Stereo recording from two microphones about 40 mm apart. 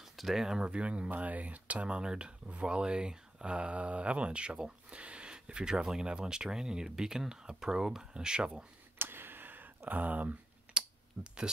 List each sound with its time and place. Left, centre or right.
0.0 s speech: centre
0.7 s speech: right
1.1 s speech: right
1.9 s speech: right
8.9 s a sound: right
9.8 s speech: right